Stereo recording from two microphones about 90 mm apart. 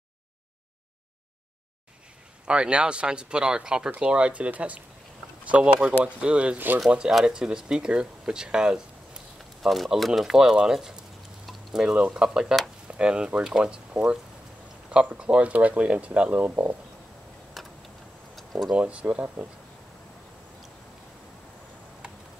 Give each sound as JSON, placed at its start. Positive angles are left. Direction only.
{"t": 2.4, "sound": "speech", "side_deg": -10}
{"t": 6.9, "sound": "speech", "side_deg": -5}
{"t": 17.6, "sound": "tick-tock", "side_deg": 0}
{"t": 18.3, "sound": "a sound", "side_deg": 0}
{"t": 18.8, "sound": "speech", "side_deg": -15}